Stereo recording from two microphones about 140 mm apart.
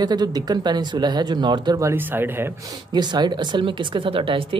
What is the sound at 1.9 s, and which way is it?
Speech, 15° right (ahead or behind).